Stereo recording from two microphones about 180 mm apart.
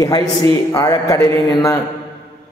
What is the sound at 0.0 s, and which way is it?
A man's voice, 20° left (ahead or behind).